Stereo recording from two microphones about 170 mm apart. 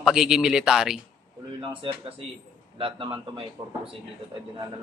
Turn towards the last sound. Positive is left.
turn(degrees=-30)  # may be behind; listen again after turning